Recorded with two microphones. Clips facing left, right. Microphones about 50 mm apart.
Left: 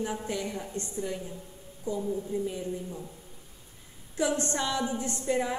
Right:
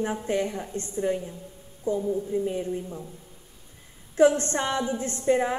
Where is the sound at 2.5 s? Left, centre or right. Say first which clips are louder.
Right 5 dB; right.